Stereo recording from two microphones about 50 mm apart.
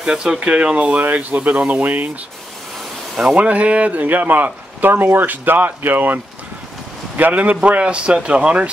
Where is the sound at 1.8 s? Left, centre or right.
Right.